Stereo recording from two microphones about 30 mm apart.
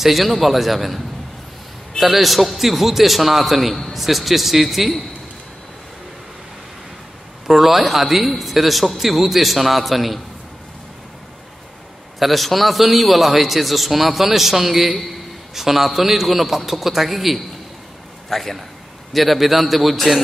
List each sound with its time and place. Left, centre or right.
0.0 s a man's voice: centre
7.4 s a man's voice: centre
12.2 s a man's voice: centre